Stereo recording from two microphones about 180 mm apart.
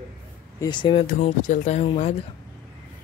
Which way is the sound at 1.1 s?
45° left (ahead or behind).